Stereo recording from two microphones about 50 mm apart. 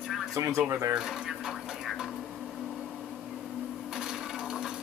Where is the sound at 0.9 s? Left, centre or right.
Centre.